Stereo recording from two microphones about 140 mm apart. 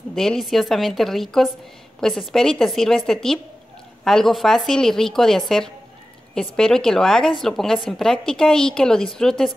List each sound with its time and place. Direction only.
0.1 s a woman's voice: 5° left (ahead or behind)